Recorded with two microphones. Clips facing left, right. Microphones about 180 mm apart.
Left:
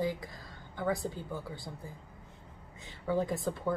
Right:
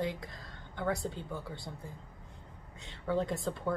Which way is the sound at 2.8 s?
Centre (ahead or behind).